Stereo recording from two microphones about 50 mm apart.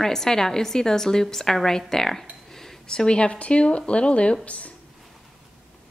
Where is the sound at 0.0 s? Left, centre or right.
Centre; by 4.7 s left.